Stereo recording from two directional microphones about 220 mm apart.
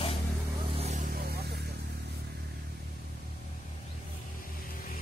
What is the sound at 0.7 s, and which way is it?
Vehicle, 30° right (ahead or behind).